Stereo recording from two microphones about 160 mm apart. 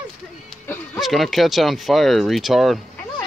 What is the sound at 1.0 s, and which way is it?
Speech, centre (ahead or behind).